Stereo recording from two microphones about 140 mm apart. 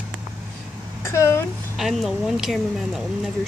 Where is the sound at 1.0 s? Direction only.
20° left (ahead or behind).